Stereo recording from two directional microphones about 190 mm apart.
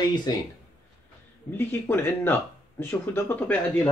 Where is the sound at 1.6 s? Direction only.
10° left (ahead or behind).